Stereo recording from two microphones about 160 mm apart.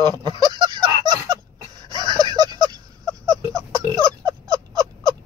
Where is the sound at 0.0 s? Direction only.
25° right (ahead or behind).